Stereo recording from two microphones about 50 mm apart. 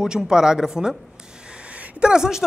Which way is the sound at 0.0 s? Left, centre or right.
Centre.